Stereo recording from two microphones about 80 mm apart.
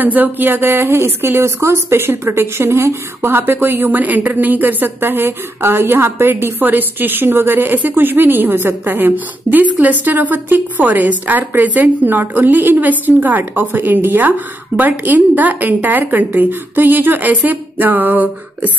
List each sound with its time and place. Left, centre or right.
0.0 s speech: right